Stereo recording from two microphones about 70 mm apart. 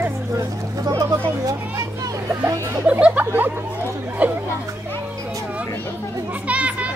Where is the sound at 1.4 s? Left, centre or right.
Right.